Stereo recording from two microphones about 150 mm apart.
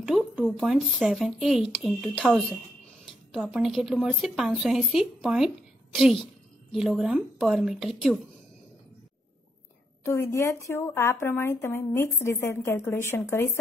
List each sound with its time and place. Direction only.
0.0 s a woman's voice: 5° right (ahead or behind)
10.0 s a woman's voice: 15° left (ahead or behind)